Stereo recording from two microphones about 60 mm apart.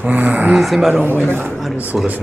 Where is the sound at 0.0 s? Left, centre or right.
Right.